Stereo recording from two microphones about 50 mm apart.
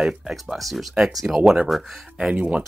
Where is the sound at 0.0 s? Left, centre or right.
Centre.